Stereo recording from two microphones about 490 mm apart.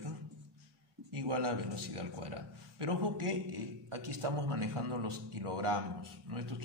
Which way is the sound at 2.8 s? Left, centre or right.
Right.